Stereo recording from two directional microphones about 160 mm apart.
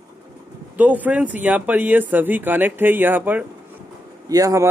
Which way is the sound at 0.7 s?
10° right (ahead or behind).